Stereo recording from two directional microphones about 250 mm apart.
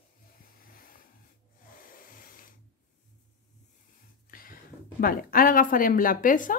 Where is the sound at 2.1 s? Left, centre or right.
Left.